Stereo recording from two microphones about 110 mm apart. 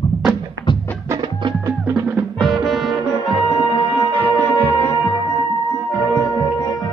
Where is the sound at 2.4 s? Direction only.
Centre (ahead or behind).